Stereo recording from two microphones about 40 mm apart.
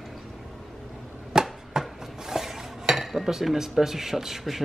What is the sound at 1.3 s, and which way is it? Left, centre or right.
Chopping, centre.